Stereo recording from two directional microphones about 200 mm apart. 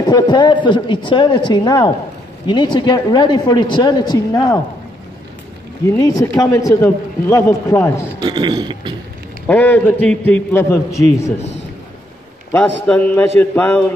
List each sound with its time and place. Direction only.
0.0 s speech: 20° left (ahead or behind)
5.9 s a man's voice: 15° left (ahead or behind)
8.2 s speech: 20° right (ahead or behind)
9.5 s a man's voice: 10° left (ahead or behind)
12.8 s a man's voice: 5° left (ahead or behind)